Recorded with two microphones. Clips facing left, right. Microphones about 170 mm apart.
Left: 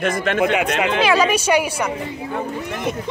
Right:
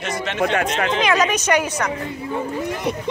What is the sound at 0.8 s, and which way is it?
Speech, 10° left (ahead or behind).